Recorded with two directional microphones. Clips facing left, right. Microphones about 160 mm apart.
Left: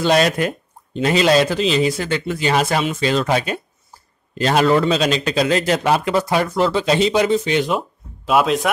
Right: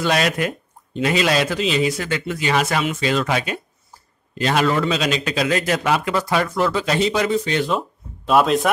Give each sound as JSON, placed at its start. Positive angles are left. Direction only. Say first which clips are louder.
{"t": 0.0, "sound": "a man's voice", "louder": "left 4 dB", "side_deg": 30}
{"t": 8.3, "sound": "a man's voice", "louder": "even", "side_deg": 0}